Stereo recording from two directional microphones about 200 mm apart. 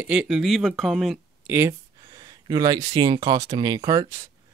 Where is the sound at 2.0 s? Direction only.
20° right (ahead or behind).